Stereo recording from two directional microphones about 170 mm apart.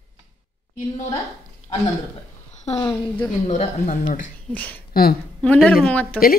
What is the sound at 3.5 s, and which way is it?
Speech, 45° left (ahead or behind).